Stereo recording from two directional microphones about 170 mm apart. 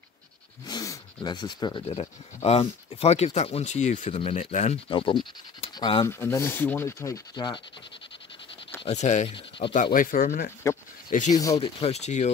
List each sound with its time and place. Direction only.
0.7 s speech: 25° left (ahead or behind); by 4.7 s 45° left (ahead or behind)
4.8 s speech: 30° left (ahead or behind)
6.0 s speech: 15° left (ahead or behind)
8.8 s speech: 40° left (ahead or behind)
9.3 s speech: 30° left (ahead or behind)
9.9 s speech: 55° left (ahead or behind)
11.5 s speech: 35° left (ahead or behind)